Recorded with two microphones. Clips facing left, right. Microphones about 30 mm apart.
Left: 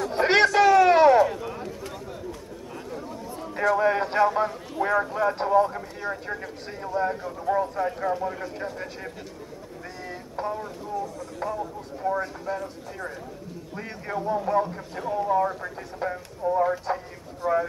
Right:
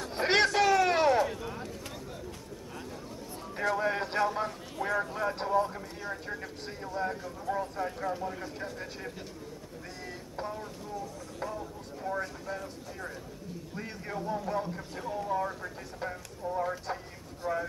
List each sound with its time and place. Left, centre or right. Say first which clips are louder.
0.1 s a sound: left 6 dB; centre
3.7 s a man's voice: left 8 dB; centre
7.2 s a man's voice: left 8 dB; left
10.4 s a man's voice: left 8 dB; centre